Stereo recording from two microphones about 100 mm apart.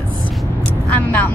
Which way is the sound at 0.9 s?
15° left (ahead or behind).